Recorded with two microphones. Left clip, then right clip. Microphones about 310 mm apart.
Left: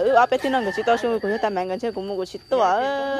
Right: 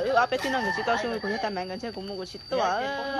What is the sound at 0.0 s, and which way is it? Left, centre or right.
Speech, centre.